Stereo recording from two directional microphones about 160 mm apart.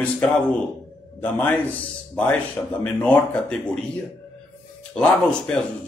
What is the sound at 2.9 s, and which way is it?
Speech, 10° left (ahead or behind).